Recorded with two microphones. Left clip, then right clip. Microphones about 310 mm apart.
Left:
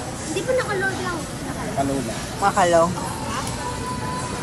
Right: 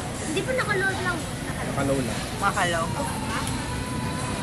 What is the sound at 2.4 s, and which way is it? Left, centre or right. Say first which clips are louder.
Speech: left 7 dB; centre.